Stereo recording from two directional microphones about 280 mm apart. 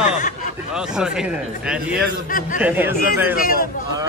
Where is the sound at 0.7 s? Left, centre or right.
Centre.